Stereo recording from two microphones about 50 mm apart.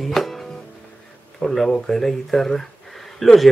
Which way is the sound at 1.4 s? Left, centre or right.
Centre.